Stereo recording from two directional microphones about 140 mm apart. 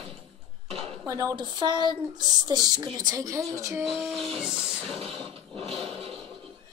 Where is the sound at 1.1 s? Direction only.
25° right (ahead or behind).